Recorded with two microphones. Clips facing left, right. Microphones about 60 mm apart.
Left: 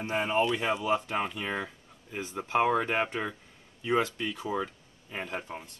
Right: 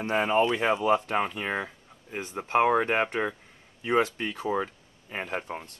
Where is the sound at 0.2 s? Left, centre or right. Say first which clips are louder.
Right 3 dB; right.